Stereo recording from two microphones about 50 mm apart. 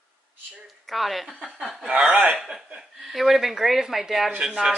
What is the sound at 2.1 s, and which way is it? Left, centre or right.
Speech, right.